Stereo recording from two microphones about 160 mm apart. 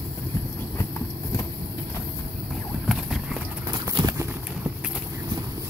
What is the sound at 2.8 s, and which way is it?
Clip-clop, 5° right (ahead or behind).